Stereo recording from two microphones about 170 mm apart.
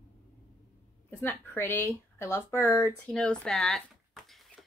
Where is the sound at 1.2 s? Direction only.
10° left (ahead or behind).